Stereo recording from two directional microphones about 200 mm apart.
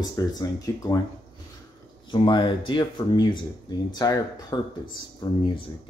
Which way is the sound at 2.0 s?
25° left (ahead or behind).